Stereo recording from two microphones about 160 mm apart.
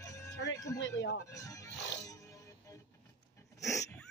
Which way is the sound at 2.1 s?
20° left (ahead or behind).